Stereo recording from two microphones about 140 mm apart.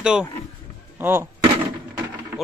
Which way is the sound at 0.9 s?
15° right (ahead or behind).